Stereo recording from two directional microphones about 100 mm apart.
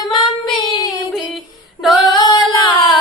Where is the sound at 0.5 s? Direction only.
45° left (ahead or behind).